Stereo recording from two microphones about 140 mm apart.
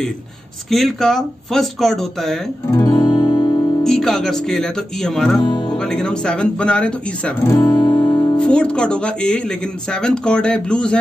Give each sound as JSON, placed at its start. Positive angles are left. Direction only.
{"t": 0.7, "sound": "speech", "side_deg": 0}
{"t": 2.7, "sound": "guitar", "side_deg": 25}
{"t": 3.8, "sound": "speech", "side_deg": 0}
{"t": 5.4, "sound": "speech", "side_deg": 30}
{"t": 5.7, "sound": "speech", "side_deg": 5}
{"t": 7.4, "sound": "music", "side_deg": 25}
{"t": 8.4, "sound": "speech", "side_deg": 5}